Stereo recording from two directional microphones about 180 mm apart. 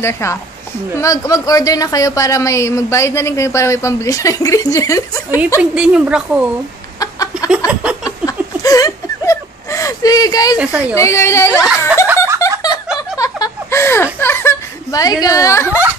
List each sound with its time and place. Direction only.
0.0 s a woman's voice: 15° left (ahead or behind)
5.6 s a woman's voice: 5° right (ahead or behind)
7.0 s a sound: 20° left (ahead or behind)
7.5 s a sound: 5° right (ahead or behind)
8.0 s a sound: 20° left (ahead or behind)
10.6 s a woman's voice: 5° right (ahead or behind)
11.0 s a woman's voice: 15° left (ahead or behind)
11.5 s speech: 5° right (ahead or behind)
12.4 s giggle: 15° left (ahead or behind)
12.8 s a sound: 5° right (ahead or behind)
13.2 s chuckle: 15° left (ahead or behind)
15.2 s a woman's voice: 20° left (ahead or behind)